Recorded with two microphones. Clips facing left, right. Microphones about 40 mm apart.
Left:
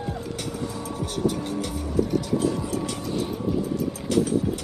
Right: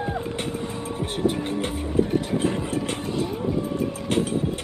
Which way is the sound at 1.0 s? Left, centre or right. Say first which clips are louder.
Right 2 dB; right.